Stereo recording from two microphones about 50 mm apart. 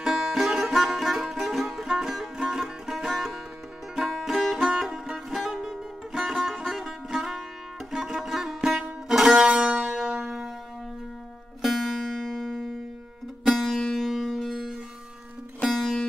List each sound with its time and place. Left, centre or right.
0.0 s music: centre
11.6 s music: centre